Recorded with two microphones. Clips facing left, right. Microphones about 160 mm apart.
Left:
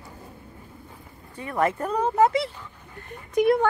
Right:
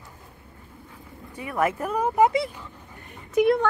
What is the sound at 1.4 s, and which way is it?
Speech, 10° right (ahead or behind).